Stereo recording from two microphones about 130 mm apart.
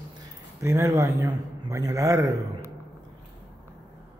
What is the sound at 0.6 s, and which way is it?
A man's voice, 20° right (ahead or behind).